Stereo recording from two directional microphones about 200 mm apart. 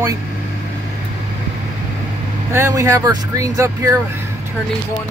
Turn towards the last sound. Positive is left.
turn(degrees=-15)  # may be behind; listen again after turning